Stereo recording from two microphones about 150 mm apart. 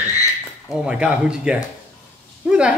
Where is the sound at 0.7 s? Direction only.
5° right (ahead or behind).